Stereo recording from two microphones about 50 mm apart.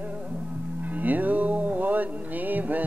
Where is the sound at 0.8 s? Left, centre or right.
Right.